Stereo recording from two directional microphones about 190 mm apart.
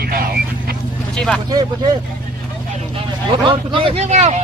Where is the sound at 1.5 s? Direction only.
20° right (ahead or behind).